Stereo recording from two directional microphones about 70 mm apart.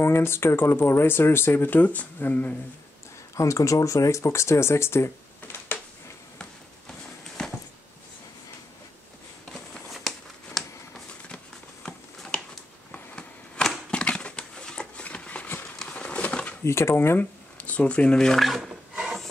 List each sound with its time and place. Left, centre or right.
0.0 s speech: left
3.3 s speech: left
6.9 s clip-clop: centre
9.8 s a sound: centre; by 16.5 s left
16.6 s speech: left
17.6 s a sound: left; by 19.2 s centre